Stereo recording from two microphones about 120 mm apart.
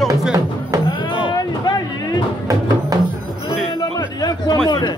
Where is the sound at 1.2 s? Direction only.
35° left (ahead or behind).